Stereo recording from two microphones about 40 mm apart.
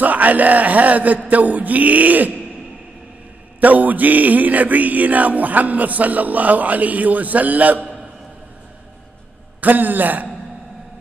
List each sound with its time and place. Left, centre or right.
0.0 s speech: right
3.6 s music: right
9.6 s music: right